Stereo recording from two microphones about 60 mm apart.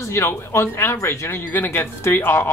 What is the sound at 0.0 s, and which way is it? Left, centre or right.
Speech, left.